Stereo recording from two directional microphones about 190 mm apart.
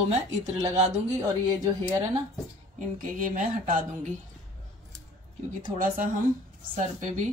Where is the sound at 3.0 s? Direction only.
45° right (ahead or behind).